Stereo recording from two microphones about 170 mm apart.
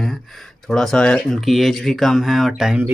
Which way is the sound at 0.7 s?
Centre (ahead or behind).